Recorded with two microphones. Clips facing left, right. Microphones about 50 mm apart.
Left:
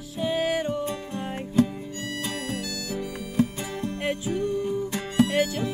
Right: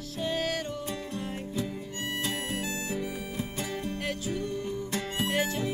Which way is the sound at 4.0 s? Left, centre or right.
Left.